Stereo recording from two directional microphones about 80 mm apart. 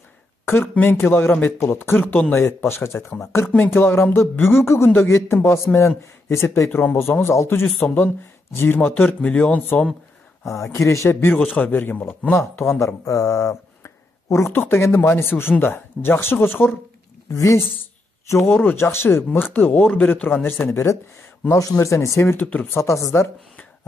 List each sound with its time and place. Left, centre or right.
0.5 s speech: left
3.5 s speech: left
10.4 s speech: left
11.4 s speech: centre; by 13.6 s left
13.8 s a sound: left
14.5 s speech: left
17.3 s speech: left; by 20.3 s centre
20.4 s speech: left
21.5 s speech: left
22.8 s speech: left